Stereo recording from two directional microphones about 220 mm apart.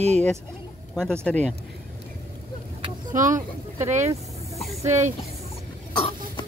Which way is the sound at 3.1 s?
35° right (ahead or behind).